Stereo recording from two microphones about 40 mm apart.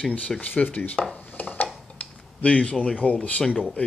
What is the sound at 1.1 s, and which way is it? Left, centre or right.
Dishes, left.